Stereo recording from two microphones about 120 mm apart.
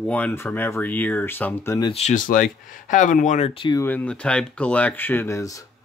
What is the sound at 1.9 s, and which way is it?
Speech, 80° left.